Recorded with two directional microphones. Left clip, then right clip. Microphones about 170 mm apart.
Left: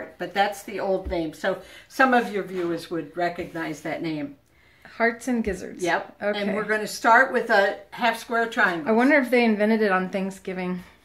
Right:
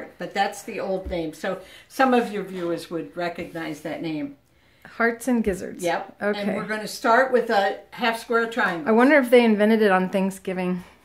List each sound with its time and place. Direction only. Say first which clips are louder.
0.2 s speech: left 1 dB; 15° right (ahead or behind)
4.9 s a woman's voice: right 1 dB; 55° right (ahead or behind)
6.6 s speech: left 3 dB; 15° right (ahead or behind)
8.8 s a woman's voice: right 7 dB; 55° right (ahead or behind)